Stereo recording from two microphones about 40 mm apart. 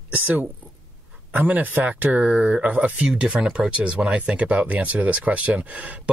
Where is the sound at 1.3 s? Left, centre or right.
Right.